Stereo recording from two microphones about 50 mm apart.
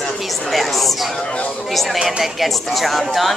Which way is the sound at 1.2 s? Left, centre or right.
Centre.